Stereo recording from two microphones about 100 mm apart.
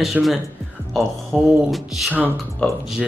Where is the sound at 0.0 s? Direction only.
Centre (ahead or behind).